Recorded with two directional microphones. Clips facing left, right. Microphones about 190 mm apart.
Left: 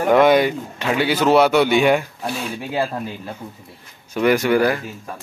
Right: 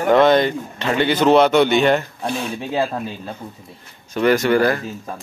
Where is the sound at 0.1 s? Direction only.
10° left (ahead or behind).